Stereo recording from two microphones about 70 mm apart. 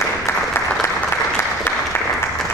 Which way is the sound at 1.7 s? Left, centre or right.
Left.